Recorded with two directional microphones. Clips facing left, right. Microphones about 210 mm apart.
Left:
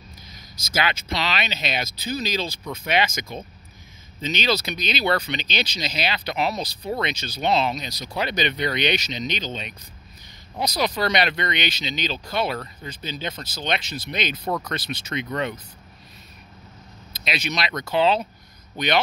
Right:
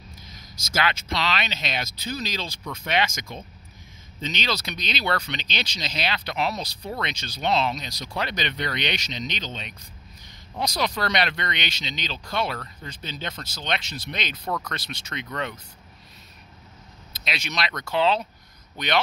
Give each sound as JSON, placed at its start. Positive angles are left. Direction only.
{"t": 0.7, "sound": "speech", "side_deg": 5}
{"t": 4.3, "sound": "speech", "side_deg": 5}
{"t": 10.8, "sound": "speech", "side_deg": 5}
{"t": 14.4, "sound": "speech", "side_deg": 20}
{"t": 14.7, "sound": "speech", "side_deg": 5}
{"t": 17.1, "sound": "speech", "side_deg": 0}